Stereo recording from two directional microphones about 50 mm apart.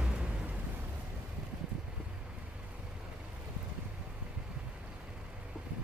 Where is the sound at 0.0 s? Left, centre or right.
Right.